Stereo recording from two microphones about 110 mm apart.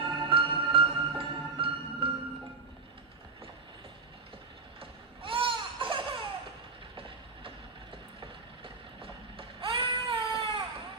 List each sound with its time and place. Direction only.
0.0 s music: 55° right (ahead or behind)
4.7 s laughter: 55° right (ahead or behind)
8.2 s vehicle: 55° right (ahead or behind)